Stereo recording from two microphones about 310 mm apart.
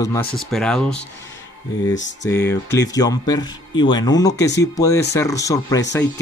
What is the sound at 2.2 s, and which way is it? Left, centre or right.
Speech, centre.